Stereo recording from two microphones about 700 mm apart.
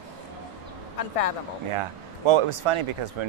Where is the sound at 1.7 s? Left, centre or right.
Right.